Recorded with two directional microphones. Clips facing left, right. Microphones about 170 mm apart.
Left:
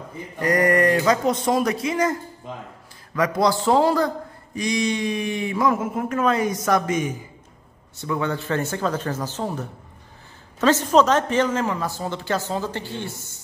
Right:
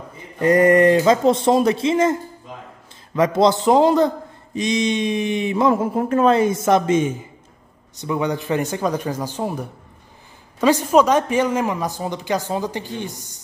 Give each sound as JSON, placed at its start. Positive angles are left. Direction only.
{"t": 0.4, "sound": "speech", "side_deg": -25}
{"t": 3.2, "sound": "a woman's voice", "side_deg": -20}